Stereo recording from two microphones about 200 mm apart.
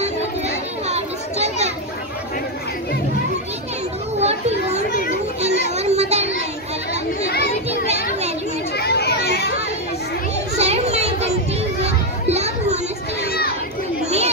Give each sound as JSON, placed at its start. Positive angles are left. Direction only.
{"t": 0.8, "sound": "children playing", "side_deg": -35}
{"t": 4.2, "sound": "children playing", "side_deg": -30}
{"t": 5.4, "sound": "a sound", "side_deg": -35}
{"t": 7.8, "sound": "children playing", "side_deg": -35}
{"t": 8.7, "sound": "children playing", "side_deg": 55}
{"t": 10.6, "sound": "children playing", "side_deg": -30}
{"t": 13.3, "sound": "crowd", "side_deg": 50}
{"t": 14.0, "sound": "chatter", "side_deg": -30}